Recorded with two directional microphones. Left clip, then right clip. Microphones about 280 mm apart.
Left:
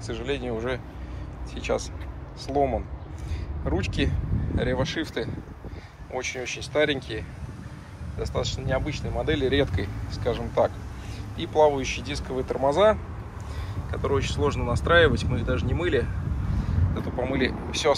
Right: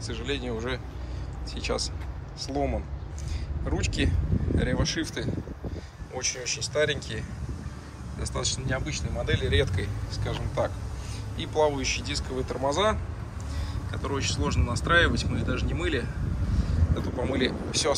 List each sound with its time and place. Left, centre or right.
0.0 s speech: centre
13.9 s speech: centre